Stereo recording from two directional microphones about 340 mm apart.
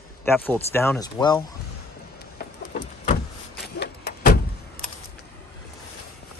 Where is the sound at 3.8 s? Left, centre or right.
Left.